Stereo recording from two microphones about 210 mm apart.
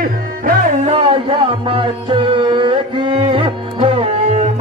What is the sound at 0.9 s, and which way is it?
Music, 25° right (ahead or behind).